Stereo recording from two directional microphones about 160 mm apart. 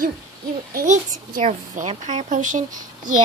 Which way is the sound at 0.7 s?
60° right (ahead or behind).